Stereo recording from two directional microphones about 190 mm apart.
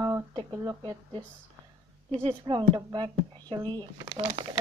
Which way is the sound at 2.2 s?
25° right (ahead or behind).